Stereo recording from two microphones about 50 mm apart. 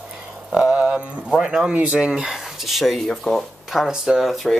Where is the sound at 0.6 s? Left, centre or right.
Centre.